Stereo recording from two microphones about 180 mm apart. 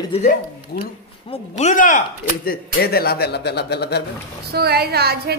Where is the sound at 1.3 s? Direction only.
40° left (ahead or behind); by 4.0 s 65° left (ahead or behind).